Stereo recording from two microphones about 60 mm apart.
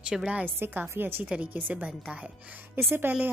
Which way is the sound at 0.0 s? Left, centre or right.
Centre.